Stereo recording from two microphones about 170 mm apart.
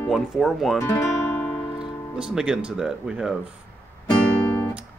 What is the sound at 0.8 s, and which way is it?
Music, 15° left (ahead or behind).